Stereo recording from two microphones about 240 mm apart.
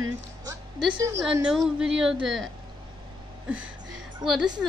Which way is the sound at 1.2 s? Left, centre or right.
Centre.